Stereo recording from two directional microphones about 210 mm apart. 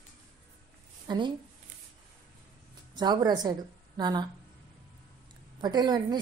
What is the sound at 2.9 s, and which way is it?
A woman's voice, 20° right (ahead or behind).